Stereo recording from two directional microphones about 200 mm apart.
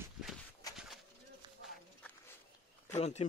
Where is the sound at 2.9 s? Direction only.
35° left (ahead or behind).